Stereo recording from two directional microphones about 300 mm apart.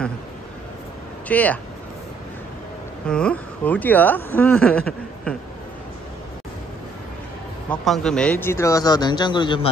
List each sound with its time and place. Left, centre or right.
1.3 s speech: centre
3.1 s speech: centre
7.7 s speech: centre